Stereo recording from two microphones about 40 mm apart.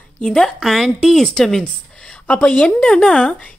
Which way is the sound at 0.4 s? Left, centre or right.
Centre.